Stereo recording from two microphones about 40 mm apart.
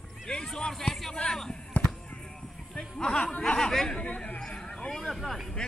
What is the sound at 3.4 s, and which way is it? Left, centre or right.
Speech, centre.